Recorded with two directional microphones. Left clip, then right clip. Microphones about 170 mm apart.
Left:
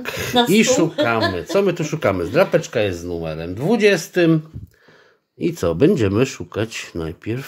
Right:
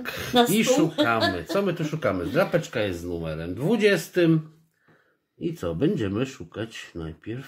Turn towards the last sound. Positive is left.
turn(degrees=45)  # may be behind; listen again after turning